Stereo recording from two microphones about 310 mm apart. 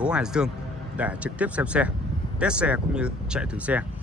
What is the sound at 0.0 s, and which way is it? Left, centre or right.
A man's voice, centre.